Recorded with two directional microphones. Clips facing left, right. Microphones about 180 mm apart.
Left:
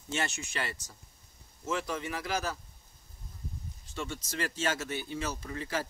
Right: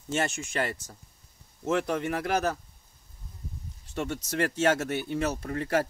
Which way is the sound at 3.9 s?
65° right (ahead or behind).